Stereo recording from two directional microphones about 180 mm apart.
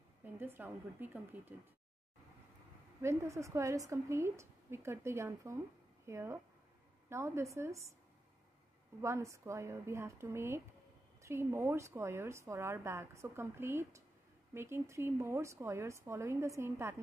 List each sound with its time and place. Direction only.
0.2 s a woman's voice: 10° right (ahead or behind)
3.0 s a woman's voice: 15° right (ahead or behind)
9.0 s a woman's voice: 15° right (ahead or behind)